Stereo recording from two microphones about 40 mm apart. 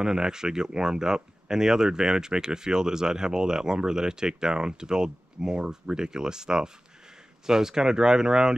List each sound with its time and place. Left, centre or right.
0.0 s speech: centre